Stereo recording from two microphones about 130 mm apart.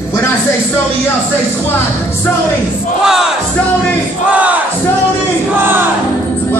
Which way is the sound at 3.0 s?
5° right (ahead or behind).